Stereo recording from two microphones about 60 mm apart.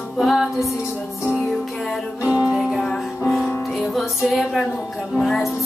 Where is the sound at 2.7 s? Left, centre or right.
Centre.